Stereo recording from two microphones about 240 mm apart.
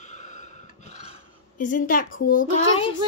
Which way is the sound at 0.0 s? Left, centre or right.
Left.